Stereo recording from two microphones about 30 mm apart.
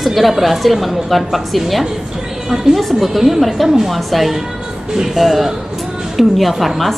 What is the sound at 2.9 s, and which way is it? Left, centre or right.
A woman's voice, centre.